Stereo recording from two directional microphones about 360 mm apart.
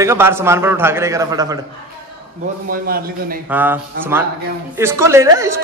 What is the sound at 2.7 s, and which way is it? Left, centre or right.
Speech, right.